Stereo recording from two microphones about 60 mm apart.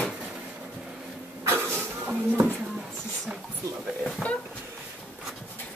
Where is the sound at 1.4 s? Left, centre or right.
Right.